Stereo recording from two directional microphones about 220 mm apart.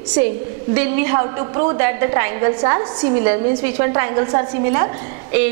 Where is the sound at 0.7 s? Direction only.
10° right (ahead or behind).